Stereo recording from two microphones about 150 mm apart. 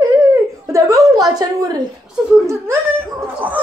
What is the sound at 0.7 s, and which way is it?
A woman's voice, 20° right (ahead or behind).